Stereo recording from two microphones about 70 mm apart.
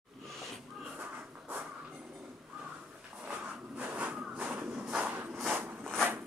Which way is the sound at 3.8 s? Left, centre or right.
Right.